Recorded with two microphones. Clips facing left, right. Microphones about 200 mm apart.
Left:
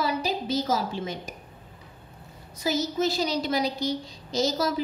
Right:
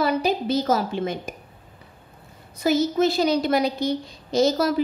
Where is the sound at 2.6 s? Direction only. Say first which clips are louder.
Right 6 dB; 55° right (ahead or behind).